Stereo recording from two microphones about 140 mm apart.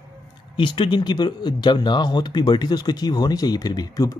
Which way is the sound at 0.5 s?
35° left (ahead or behind).